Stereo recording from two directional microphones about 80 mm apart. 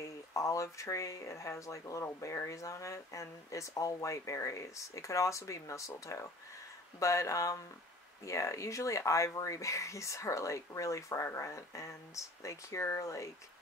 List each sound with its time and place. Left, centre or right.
0.0 s speech: left